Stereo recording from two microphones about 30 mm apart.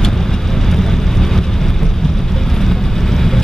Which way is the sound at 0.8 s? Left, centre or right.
Centre.